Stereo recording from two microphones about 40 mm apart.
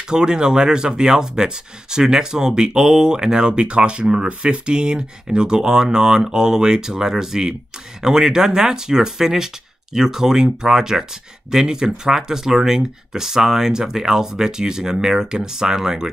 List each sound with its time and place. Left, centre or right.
0.1 s speech: centre